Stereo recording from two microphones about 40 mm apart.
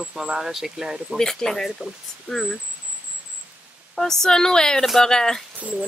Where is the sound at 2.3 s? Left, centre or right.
Centre.